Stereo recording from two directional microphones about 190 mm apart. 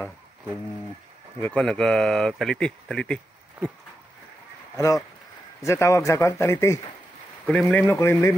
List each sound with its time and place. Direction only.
1.4 s speech: 5° left (ahead or behind)
4.7 s speech: 15° left (ahead or behind)